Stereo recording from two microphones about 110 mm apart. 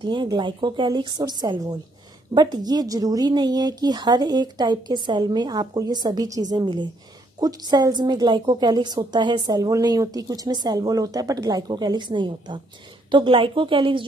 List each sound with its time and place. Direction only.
0.0 s a woman's voice: 45° right (ahead or behind)